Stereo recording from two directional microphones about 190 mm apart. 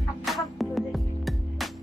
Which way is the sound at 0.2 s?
Centre (ahead or behind).